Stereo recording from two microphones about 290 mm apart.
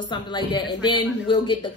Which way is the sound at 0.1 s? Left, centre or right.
Centre.